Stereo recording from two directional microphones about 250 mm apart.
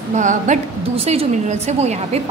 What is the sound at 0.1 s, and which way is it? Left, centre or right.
A woman's voice, right.